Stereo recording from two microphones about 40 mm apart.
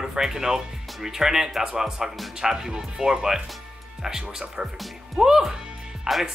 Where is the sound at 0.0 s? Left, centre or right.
Centre.